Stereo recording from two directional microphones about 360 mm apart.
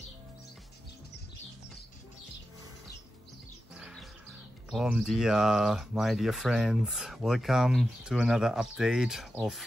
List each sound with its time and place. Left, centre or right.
3.7 s music: centre
4.6 s speech: centre